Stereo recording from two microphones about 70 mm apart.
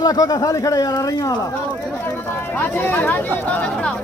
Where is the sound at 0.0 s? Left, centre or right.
Left.